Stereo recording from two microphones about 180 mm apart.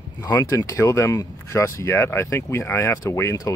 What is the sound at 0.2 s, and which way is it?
Speech, 20° left (ahead or behind).